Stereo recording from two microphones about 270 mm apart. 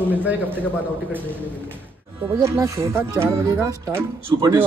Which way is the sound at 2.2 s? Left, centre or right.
Centre.